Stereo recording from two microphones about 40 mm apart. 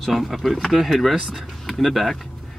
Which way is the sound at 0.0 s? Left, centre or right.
Centre.